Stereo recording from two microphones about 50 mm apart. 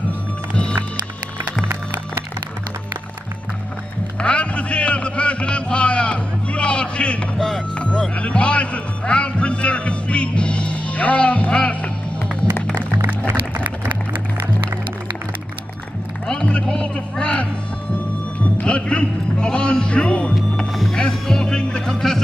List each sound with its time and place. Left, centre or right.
4.2 s music: left
7.3 s music: centre
7.7 s music: left
16.4 s music: centre